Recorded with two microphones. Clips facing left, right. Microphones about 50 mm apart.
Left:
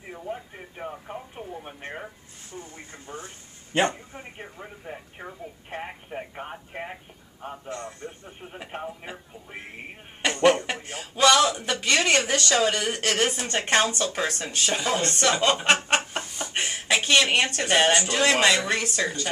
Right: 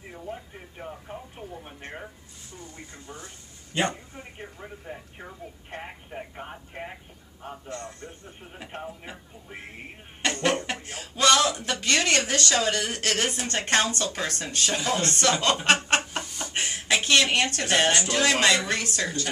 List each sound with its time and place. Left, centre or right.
0.1 s radio: centre
2.6 s speech: left
3.9 s a sound: left
4.4 s telephone: centre
7.6 s a sound: centre
13.6 s speech: centre